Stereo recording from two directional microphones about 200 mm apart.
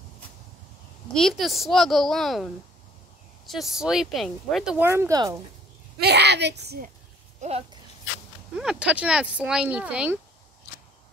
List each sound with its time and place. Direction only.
1.1 s speech: centre (ahead or behind); by 5.4 s 15° right (ahead or behind)
5.9 s a woman's voice: 55° right (ahead or behind)
7.4 s speech: 30° right (ahead or behind)
8.5 s speech: 5° right (ahead or behind)